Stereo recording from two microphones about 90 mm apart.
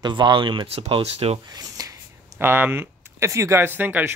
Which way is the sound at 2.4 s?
25° right (ahead or behind).